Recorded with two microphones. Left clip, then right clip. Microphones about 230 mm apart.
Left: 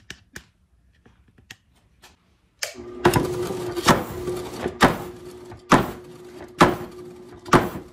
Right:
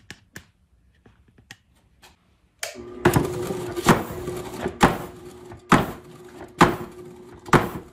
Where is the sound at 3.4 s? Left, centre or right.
Centre.